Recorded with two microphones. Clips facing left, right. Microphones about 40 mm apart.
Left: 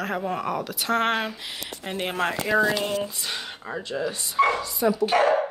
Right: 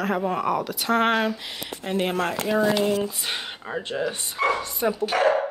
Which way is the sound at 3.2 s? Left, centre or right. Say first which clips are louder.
Right 2 dB; right.